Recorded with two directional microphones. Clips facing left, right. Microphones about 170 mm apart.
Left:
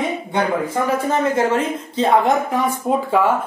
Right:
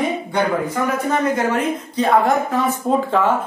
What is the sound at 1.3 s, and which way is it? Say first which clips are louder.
Speech: left 1 dB; 25° left (ahead or behind).